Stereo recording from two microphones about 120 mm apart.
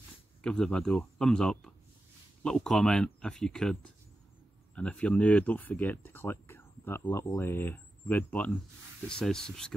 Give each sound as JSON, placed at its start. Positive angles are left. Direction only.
{"t": 0.4, "sound": "speech", "side_deg": 5}